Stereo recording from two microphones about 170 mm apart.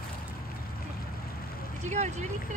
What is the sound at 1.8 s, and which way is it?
Speech, 40° right (ahead or behind).